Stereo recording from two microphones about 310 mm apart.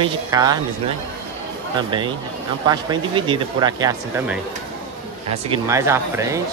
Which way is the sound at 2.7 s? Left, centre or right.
Centre.